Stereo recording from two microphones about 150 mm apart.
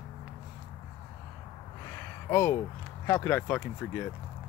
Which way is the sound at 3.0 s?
20° left (ahead or behind).